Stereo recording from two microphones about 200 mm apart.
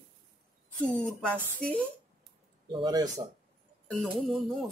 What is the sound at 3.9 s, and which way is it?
Speech, centre (ahead or behind).